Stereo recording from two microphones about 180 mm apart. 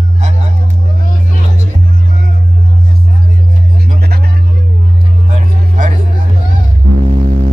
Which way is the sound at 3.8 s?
60° right (ahead or behind).